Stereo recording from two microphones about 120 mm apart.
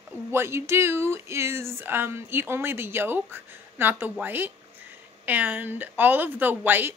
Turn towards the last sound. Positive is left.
turn(degrees=-15)  # may be behind; listen again after turning